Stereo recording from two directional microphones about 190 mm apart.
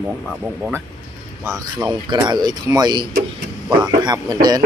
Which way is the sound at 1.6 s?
20° right (ahead or behind).